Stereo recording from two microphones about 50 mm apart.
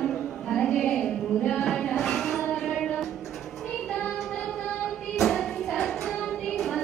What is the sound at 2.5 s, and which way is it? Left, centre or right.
Music, centre.